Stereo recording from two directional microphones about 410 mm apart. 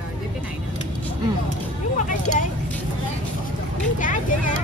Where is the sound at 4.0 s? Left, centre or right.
Centre.